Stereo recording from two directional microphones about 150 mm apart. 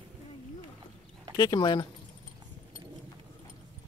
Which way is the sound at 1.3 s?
30° left (ahead or behind).